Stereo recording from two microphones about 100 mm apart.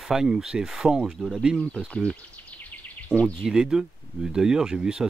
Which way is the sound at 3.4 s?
5° right (ahead or behind).